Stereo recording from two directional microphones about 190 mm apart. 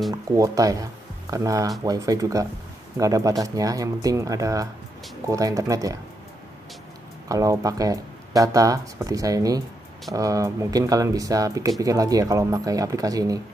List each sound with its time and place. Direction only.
0.1 s speech: 15° right (ahead or behind)
7.2 s speech: 15° right (ahead or behind)